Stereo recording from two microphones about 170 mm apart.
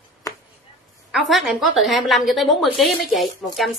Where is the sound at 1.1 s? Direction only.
Centre (ahead or behind).